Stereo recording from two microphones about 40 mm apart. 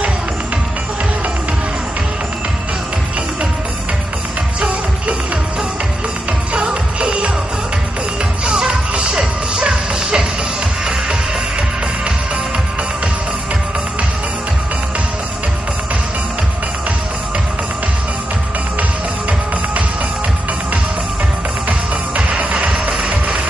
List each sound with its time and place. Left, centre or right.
6.5 s music: centre
8.5 s music: centre
21.6 s music: right